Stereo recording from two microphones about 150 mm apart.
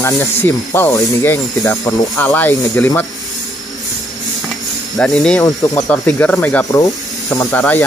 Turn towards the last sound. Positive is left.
turn(degrees=10)  # may be behind; listen again after turning